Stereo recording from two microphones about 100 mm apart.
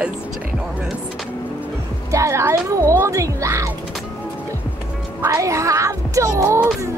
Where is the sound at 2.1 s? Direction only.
30° right (ahead or behind).